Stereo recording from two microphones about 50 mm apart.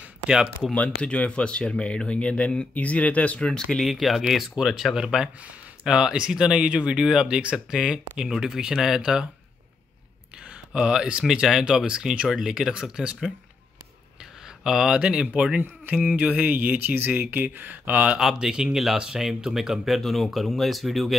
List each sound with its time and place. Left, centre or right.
0.7 s speech: left
3.4 s speech: centre
3.8 s speech: centre
10.7 s speech: centre
14.6 s speech: centre
15.9 s speech: right
18.1 s speech: centre
20.0 s speech: centre